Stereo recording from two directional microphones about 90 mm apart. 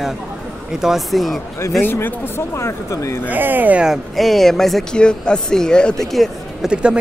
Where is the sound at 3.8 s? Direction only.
Centre (ahead or behind).